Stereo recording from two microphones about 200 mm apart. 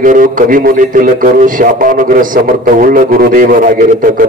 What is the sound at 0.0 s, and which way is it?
A man's voice, 45° right (ahead or behind).